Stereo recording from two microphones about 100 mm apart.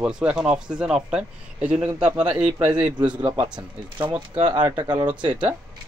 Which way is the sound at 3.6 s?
55° right (ahead or behind).